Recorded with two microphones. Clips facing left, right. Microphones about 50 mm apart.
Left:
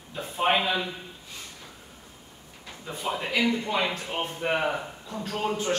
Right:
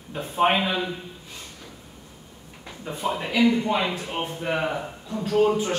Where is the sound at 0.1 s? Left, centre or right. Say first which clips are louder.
Right 7 dB; right.